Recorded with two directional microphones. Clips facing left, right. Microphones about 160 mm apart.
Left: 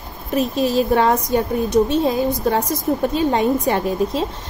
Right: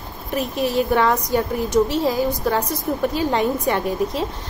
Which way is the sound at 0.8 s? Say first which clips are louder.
Left 1 dB; 25° left (ahead or behind).